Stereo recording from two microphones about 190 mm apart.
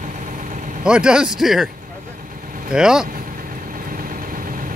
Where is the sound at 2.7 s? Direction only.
5° right (ahead or behind).